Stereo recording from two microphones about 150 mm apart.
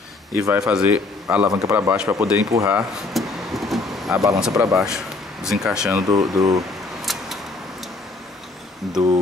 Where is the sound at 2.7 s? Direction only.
Centre (ahead or behind).